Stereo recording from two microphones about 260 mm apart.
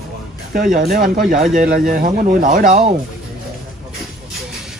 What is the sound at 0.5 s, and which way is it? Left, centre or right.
Speech, right.